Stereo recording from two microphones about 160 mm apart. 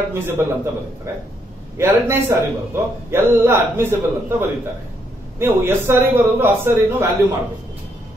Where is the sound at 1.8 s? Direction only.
15° right (ahead or behind).